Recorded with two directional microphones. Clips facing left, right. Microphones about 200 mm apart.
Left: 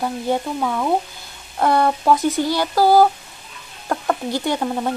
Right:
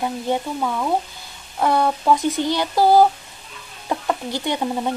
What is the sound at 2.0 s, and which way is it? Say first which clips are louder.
Speech: left 1 dB; 5° left (ahead or behind).